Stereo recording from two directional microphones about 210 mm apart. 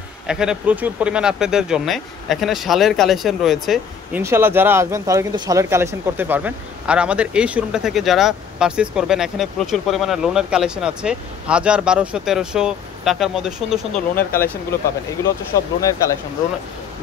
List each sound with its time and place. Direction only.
0.3 s speech: 5° right (ahead or behind)
14.1 s speech: 10° left (ahead or behind)
15.8 s speech: 15° left (ahead or behind)